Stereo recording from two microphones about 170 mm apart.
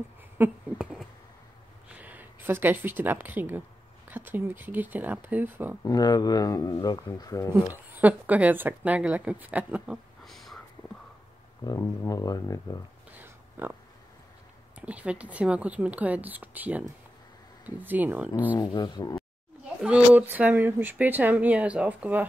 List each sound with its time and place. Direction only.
0.4 s a sound: 5° right (ahead or behind)
2.0 s speech: 10° right (ahead or behind)
5.9 s speech: 25° left (ahead or behind)
7.7 s speech: 10° right (ahead or behind)
11.6 s speech: 20° left (ahead or behind)
13.2 s a sound: 10° right (ahead or behind)
14.8 s speech: 10° right (ahead or behind)
18.6 s speech: 25° left (ahead or behind)
19.8 s speech: 5° right (ahead or behind)